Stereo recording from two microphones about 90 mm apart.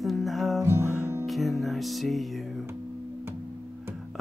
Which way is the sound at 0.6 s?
30° right (ahead or behind).